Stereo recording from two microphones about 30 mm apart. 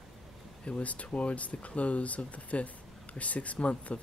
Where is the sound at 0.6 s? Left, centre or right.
Left.